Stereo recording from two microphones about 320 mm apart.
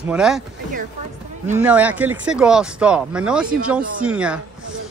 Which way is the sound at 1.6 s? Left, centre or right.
Centre.